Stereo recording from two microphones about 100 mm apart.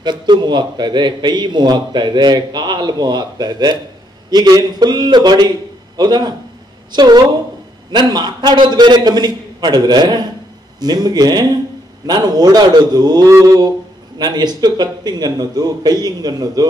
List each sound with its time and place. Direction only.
0.0 s a man's voice: 50° right (ahead or behind)